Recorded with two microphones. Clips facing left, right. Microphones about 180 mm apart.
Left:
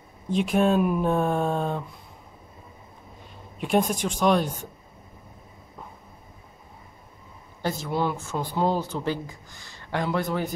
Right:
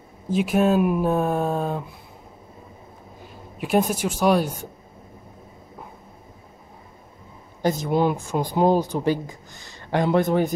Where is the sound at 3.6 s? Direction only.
5° right (ahead or behind).